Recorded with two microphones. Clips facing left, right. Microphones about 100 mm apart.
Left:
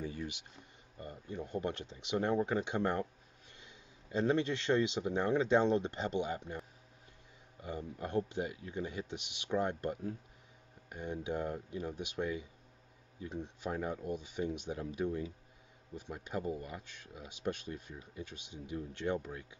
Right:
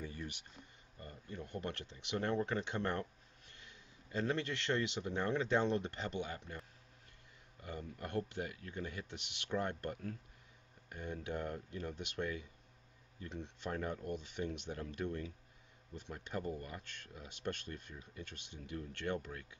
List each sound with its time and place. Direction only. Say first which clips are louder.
0.9 s speech: left 5 dB; 20° left (ahead or behind)
7.6 s speech: left 5 dB; 15° left (ahead or behind)